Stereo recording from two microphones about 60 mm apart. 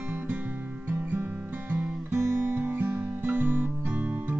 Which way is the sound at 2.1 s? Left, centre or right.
Right.